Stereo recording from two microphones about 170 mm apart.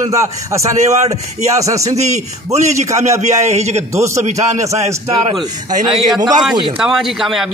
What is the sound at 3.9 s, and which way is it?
Speech, 15° right (ahead or behind).